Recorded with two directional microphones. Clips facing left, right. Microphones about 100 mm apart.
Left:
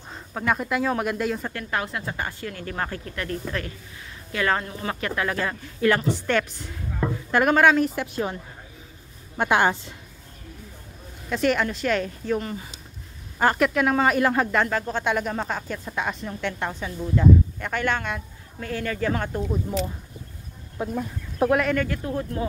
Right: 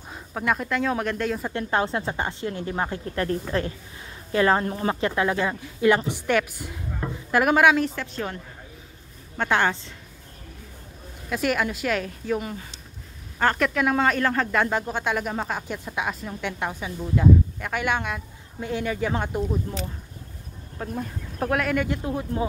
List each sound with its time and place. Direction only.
0.1 s speech: 5° right (ahead or behind)
1.5 s speech: 30° right (ahead or behind)
3.1 s a woman's voice: 30° right (ahead or behind); by 7.8 s 5° right (ahead or behind)
7.9 s speech: 15° left (ahead or behind)
9.4 s speech: 15° left (ahead or behind)
11.2 s a woman's voice: 5° right (ahead or behind)
13.4 s speech: 5° left (ahead or behind)
14.7 s a woman's voice: 15° right (ahead or behind)
20.8 s speech: 10° left (ahead or behind)
21.4 s a woman's voice: centre (ahead or behind)
21.7 s speech: 20° right (ahead or behind)